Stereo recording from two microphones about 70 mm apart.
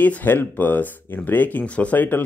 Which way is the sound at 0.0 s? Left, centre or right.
Left.